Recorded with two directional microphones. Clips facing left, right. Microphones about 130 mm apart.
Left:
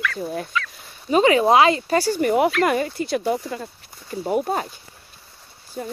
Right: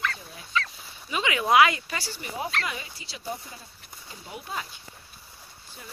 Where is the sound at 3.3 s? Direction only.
90° left.